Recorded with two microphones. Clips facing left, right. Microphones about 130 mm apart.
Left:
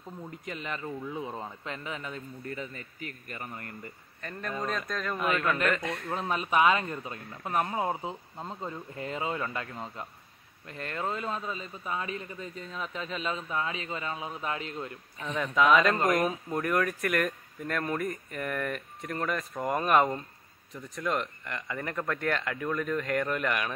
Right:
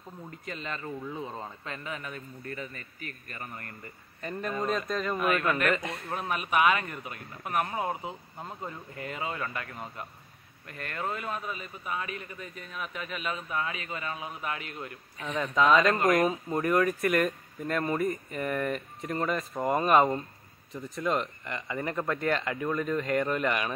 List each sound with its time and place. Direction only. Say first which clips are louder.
0.5 s a man's voice: even; 15° left (ahead or behind)
4.2 s speech: right 3 dB; 10° right (ahead or behind)
6.1 s a man's voice: left 1 dB; 25° left (ahead or behind)
10.7 s a man's voice: left 1 dB; 25° left (ahead or behind)
15.2 s speech: even; centre (ahead or behind)